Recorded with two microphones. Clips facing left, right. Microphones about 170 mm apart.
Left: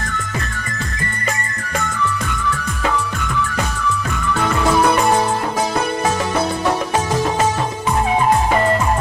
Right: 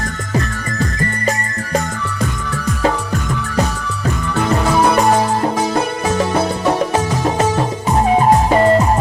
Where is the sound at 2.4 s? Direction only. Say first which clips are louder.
Right 4 dB; 40° right (ahead or behind).